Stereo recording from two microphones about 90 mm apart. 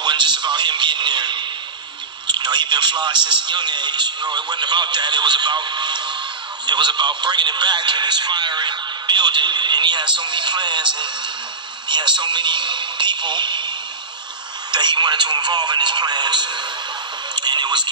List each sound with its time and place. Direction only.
0.0 s radio: 55° right (ahead or behind)
2.2 s a man's voice: 55° right (ahead or behind)
11.9 s speech: 60° right (ahead or behind)
14.7 s a man's voice: 55° right (ahead or behind)
17.4 s radio: 55° right (ahead or behind)